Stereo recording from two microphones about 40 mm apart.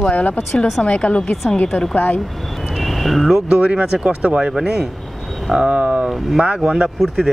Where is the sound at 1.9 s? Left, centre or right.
Left.